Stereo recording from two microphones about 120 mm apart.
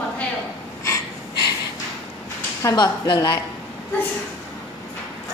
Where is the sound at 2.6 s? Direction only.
30° left (ahead or behind).